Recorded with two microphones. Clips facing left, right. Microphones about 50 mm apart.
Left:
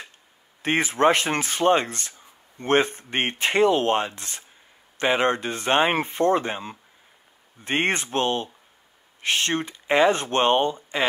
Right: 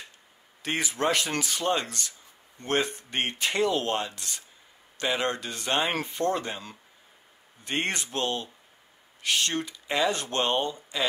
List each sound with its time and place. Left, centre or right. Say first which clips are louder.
0.6 s speech: left 7 dB; left